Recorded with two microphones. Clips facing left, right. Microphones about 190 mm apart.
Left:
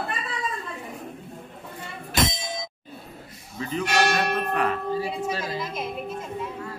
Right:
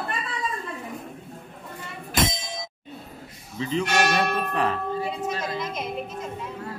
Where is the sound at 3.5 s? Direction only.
25° right (ahead or behind).